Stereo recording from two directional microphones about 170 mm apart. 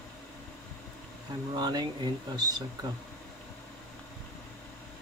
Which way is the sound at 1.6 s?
25° right (ahead or behind).